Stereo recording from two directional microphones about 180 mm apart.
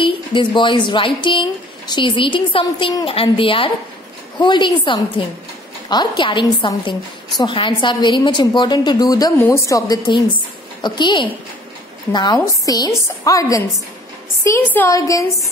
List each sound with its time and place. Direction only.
0.0 s a woman's voice: 30° left (ahead or behind)